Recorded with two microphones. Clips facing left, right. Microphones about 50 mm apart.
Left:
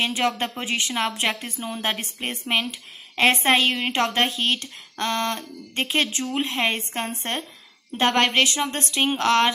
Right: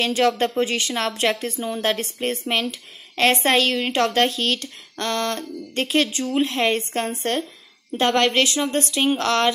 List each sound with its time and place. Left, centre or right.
0.0 s speech: centre